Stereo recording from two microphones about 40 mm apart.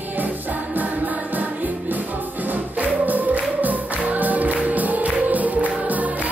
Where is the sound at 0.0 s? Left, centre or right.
Right.